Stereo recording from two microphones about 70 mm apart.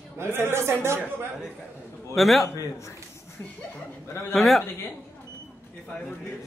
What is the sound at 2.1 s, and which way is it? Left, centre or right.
Speech, centre.